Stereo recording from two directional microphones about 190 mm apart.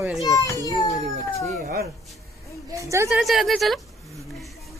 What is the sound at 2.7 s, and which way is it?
Speech, 15° right (ahead or behind).